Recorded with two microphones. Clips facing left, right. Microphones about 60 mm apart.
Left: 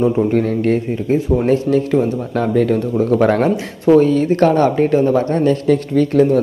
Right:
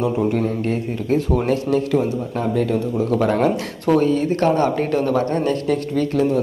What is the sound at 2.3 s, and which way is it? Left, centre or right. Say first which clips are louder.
A man's voice: left 6 dB; left.